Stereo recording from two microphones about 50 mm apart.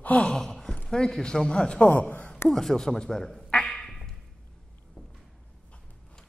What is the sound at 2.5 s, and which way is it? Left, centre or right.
A man's voice, centre.